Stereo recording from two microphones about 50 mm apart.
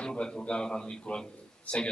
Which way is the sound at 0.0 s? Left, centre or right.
Centre.